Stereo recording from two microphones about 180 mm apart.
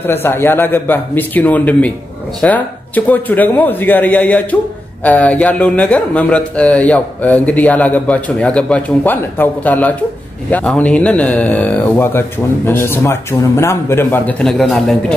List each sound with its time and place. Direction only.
0.0 s speech: 10° left (ahead or behind)